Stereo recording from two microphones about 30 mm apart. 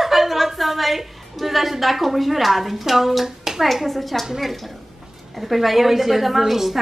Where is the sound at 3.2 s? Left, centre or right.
Centre.